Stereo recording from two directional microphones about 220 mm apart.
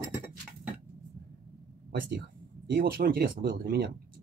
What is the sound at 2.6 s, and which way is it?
Speech, 45° right (ahead or behind).